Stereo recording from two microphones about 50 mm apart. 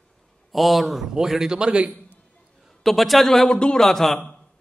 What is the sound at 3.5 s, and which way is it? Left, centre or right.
Speech, centre.